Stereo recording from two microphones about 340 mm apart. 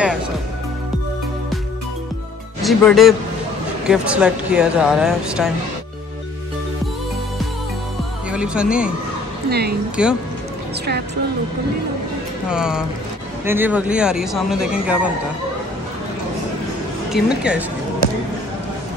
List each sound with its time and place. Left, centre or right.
2.6 s speech: centre
8.3 s speech: centre
9.5 s speech: right
10.0 s speech: centre
12.4 s speech: centre
17.1 s speech: centre
18.0 s basketball bounce: right